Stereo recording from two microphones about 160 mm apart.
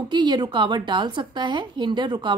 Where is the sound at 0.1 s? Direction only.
25° right (ahead or behind).